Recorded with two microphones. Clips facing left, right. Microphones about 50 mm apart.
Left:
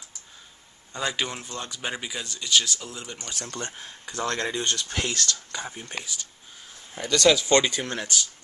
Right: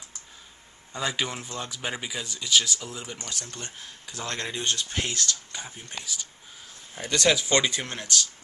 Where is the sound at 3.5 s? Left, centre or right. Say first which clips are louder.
Left 5 dB; left.